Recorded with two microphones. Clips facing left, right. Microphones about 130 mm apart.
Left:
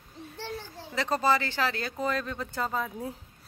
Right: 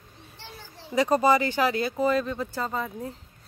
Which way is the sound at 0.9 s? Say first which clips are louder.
Right 5 dB; 15° right (ahead or behind).